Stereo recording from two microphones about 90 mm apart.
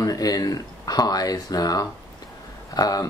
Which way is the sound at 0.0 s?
45° left (ahead or behind).